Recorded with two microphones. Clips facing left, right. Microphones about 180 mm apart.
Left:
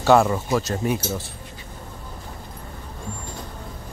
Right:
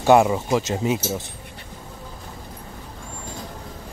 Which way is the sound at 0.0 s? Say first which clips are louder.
Right 1 dB; 15° right (ahead or behind).